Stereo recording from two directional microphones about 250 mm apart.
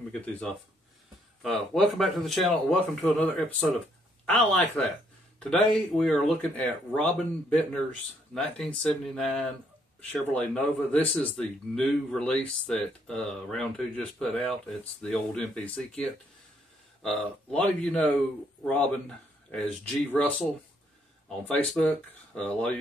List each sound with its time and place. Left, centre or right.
0.1 s a man's voice: centre
17.5 s a man's voice: centre
21.5 s a man's voice: centre